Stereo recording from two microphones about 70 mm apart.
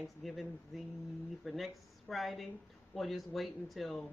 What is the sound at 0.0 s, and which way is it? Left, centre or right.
Speech, centre.